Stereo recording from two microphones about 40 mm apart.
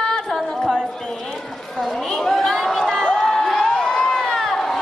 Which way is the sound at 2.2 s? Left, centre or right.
Centre.